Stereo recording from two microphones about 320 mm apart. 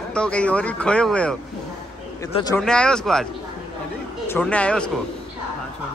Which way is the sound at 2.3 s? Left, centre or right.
Centre.